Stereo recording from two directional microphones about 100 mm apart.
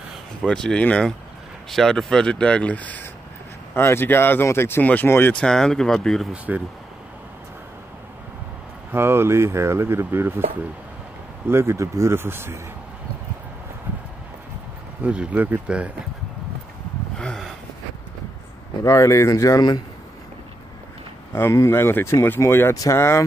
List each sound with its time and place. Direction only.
0.5 s speech: 5° left (ahead or behind)
5.3 s speech: 5° left (ahead or behind)
6.3 s speech: 15° right (ahead or behind)
8.9 s speech: 25° right (ahead or behind)
11.4 s speech: 25° right (ahead or behind)
15.0 s speech: 10° right (ahead or behind)
17.2 s gasp: 5° left (ahead or behind)
18.9 s speech: 30° left (ahead or behind)
21.3 s speech: 25° left (ahead or behind)